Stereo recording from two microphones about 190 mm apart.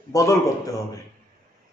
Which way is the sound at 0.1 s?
15° left (ahead or behind).